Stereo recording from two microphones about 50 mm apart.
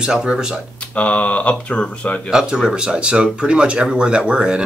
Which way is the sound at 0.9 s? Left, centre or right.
Left.